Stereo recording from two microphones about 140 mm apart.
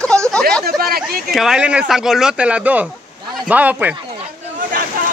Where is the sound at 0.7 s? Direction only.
90° right.